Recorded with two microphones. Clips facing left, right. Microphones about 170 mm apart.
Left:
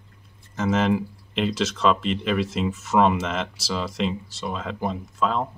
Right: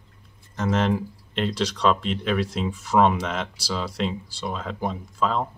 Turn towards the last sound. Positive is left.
turn(degrees=0)  # may be behind; listen again after turning